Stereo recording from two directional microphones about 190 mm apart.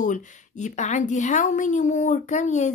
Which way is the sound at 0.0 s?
40° left (ahead or behind).